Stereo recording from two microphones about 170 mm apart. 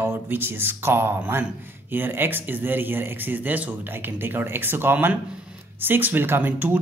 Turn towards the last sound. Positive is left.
turn(degrees=-10)  # may be behind; listen again after turning